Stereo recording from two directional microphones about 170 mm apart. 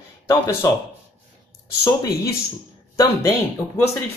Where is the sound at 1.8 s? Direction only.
20° left (ahead or behind).